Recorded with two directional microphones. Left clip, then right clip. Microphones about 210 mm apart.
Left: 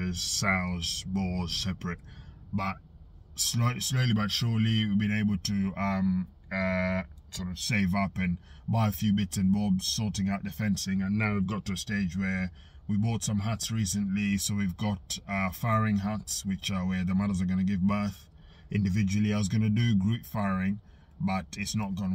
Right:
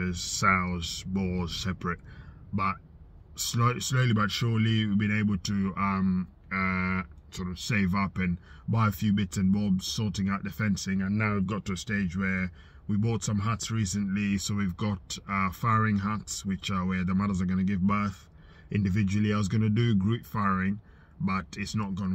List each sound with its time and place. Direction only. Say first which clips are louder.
0.1 s speech: right 3 dB; 5° left (ahead or behind)
3.3 s speech: right 2 dB; 10° left (ahead or behind)
7.3 s speech: even; 15° left (ahead or behind)